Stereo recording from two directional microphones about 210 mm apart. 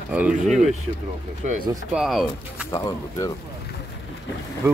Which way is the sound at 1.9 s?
Centre (ahead or behind).